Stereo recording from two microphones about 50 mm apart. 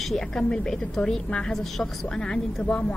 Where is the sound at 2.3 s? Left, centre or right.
Centre.